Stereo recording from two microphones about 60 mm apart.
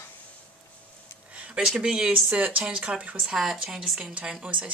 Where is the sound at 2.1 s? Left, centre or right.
Right; by 4.1 s centre.